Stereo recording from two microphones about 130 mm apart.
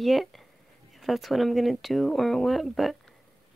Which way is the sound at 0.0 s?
Centre (ahead or behind).